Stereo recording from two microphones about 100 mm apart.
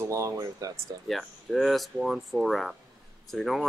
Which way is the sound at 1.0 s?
Centre (ahead or behind).